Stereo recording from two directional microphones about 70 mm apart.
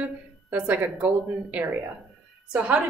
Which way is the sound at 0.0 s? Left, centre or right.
Right.